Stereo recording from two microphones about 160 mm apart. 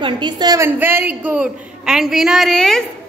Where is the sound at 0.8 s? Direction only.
15° right (ahead or behind).